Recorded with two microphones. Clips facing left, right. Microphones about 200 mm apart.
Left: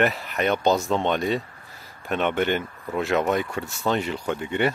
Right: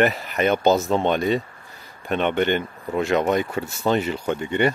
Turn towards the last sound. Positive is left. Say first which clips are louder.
# right 3 dB
turn(degrees=5)  # may be behind; listen again after turning